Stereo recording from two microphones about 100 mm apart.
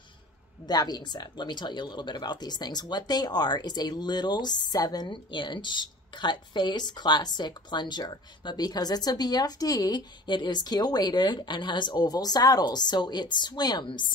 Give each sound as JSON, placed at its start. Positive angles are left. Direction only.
{"t": 0.7, "sound": "speech", "side_deg": 45}